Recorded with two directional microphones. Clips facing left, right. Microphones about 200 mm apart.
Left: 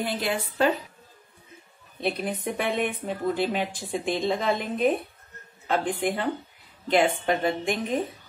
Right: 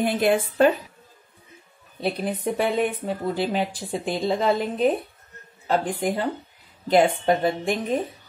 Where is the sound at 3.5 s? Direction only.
35° right (ahead or behind).